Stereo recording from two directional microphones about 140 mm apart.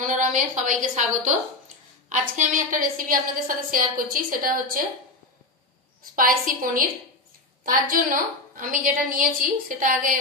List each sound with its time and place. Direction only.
0.0 s a woman's voice: 70° right (ahead or behind); by 4.8 s 90° right
6.1 s a woman's voice: 75° right (ahead or behind)